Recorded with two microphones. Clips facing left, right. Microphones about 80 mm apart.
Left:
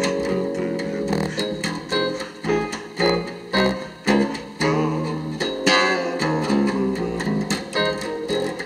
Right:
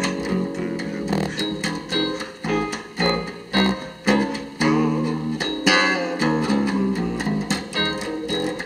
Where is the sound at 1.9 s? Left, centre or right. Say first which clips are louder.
Left 3 dB; left.